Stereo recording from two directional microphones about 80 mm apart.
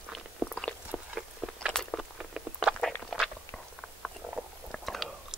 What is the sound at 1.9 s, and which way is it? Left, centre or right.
Patter, centre.